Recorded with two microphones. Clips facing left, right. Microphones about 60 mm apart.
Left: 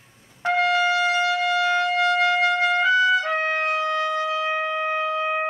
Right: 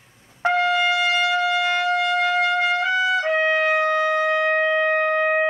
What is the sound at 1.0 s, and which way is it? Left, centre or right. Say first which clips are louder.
Shofar: right 1 dB; right.